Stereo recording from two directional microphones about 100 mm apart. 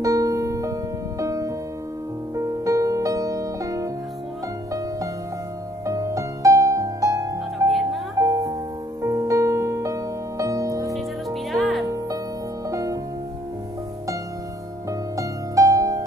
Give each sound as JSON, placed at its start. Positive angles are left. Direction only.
{"t": 0.0, "sound": "music", "side_deg": -35}
{"t": 5.9, "sound": "music", "side_deg": -35}
{"t": 10.9, "sound": "music", "side_deg": 0}
{"t": 12.6, "sound": "music", "side_deg": -35}
{"t": 14.9, "sound": "music", "side_deg": -35}